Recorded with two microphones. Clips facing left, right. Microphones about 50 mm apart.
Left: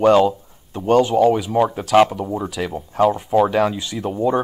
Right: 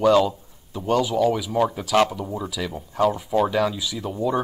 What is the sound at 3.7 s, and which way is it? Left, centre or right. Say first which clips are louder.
Speech: left 4 dB; left.